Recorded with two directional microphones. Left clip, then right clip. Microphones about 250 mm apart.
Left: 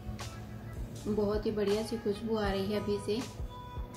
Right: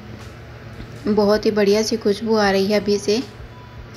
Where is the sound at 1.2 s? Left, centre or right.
Right.